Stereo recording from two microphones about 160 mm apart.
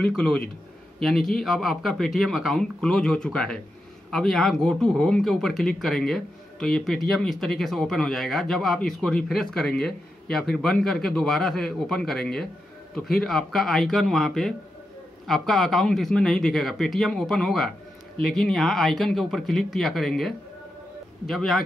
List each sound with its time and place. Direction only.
0.0 s speech: 5° left (ahead or behind)